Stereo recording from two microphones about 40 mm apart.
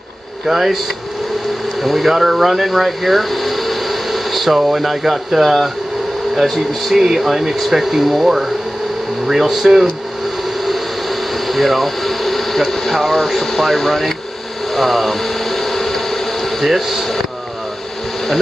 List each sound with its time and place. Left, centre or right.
0.5 s speech: centre
1.8 s speech: centre
6.9 s speech: centre
10.6 s a sound: centre
16.6 s speech: centre